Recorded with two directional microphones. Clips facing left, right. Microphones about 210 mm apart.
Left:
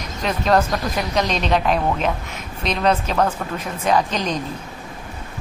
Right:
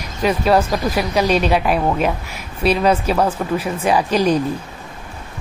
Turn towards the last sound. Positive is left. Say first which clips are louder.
# right 4 dB
turn(degrees=-10)  # may be behind; listen again after turning